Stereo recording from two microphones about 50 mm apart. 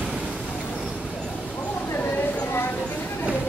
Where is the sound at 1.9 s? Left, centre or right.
Left.